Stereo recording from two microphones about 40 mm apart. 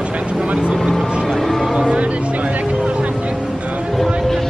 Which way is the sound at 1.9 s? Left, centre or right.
Right.